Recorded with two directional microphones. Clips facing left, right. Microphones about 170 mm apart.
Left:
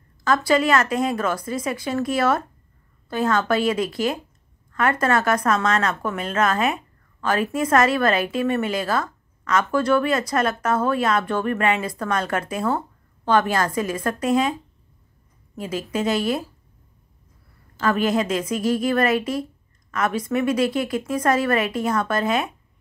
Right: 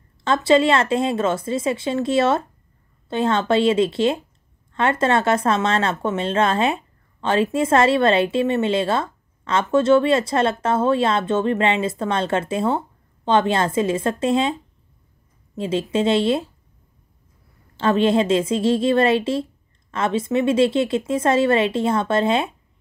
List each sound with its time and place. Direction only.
0.2 s a woman's voice: 25° right (ahead or behind)
17.7 s a woman's voice: 25° right (ahead or behind)